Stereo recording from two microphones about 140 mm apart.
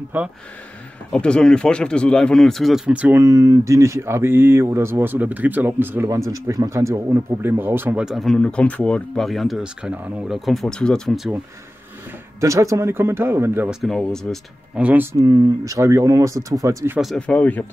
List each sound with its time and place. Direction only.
0.1 s speech: 15° right (ahead or behind)
1.1 s speech: 5° left (ahead or behind); by 8.0 s 15° right (ahead or behind)
8.0 s speech: centre (ahead or behind)
12.4 s speech: 20° right (ahead or behind)
13.7 s speech: centre (ahead or behind)
14.8 s speech: 10° right (ahead or behind)
15.1 s speech: 25° right (ahead or behind)
17.0 s speech: centre (ahead or behind)
17.4 s speech: 10° left (ahead or behind)